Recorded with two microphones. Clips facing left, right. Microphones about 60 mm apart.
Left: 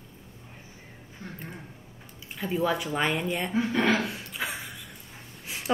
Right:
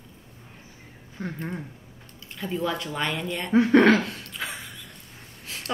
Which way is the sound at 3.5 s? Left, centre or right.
Right.